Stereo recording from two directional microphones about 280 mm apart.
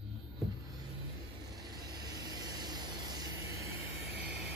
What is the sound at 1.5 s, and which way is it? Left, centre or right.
Vehicle, centre.